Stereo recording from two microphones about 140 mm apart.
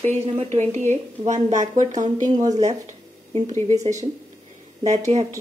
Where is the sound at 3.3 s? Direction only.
50° right (ahead or behind).